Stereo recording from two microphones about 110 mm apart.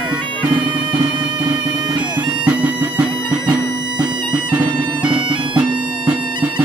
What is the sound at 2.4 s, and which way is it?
Music, 10° right (ahead or behind).